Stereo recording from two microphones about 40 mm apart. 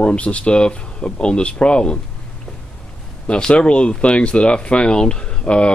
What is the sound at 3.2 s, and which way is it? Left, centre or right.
Speech, left.